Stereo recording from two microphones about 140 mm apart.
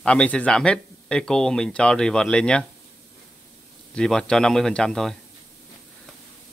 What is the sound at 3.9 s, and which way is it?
Speech, 5° left (ahead or behind).